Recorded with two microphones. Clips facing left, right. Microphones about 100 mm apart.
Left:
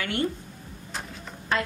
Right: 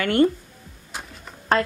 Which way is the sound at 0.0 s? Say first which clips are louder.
Right 9 dB; 50° right (ahead or behind).